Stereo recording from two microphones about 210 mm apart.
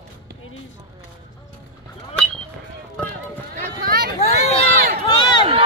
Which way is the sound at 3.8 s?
45° right (ahead or behind).